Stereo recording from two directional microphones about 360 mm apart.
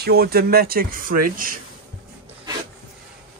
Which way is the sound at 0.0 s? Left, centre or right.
Right.